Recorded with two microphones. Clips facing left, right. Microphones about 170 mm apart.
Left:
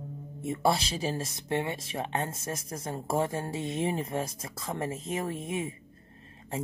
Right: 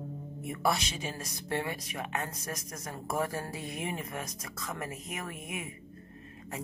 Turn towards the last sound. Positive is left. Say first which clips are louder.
# left 7 dB
turn(degrees=30)  # may be behind; listen again after turning